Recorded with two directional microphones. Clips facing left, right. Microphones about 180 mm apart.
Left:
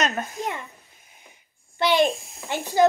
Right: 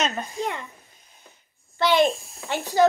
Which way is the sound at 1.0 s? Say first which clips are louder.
Even; 10° left (ahead or behind).